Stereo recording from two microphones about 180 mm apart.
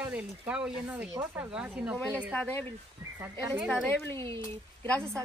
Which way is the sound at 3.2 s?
20° right (ahead or behind).